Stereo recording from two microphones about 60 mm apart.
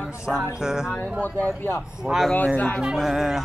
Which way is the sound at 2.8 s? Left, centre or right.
Centre.